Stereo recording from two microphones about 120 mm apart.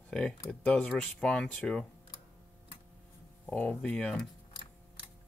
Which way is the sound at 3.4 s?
10° left (ahead or behind).